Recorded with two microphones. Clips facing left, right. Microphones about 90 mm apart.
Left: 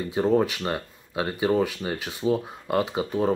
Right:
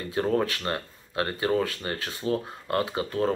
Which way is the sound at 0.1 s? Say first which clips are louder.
Left 3 dB; 10° left (ahead or behind).